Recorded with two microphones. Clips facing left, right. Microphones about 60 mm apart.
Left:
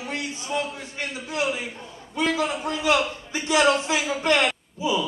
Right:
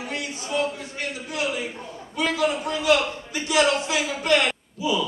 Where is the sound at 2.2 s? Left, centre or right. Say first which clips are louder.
Right 1 dB; left.